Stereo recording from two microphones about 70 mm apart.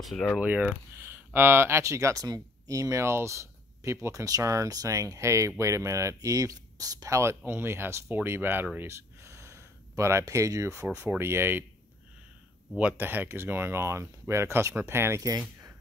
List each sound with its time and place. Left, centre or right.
0.0 s speech: centre
0.4 s speech: right
2.2 s speech: right
7.2 s speech: right
8.7 s speech: right
12.9 s speech: right
15.2 s speech: right